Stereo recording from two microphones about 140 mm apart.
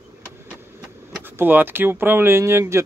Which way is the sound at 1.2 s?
15° right (ahead or behind).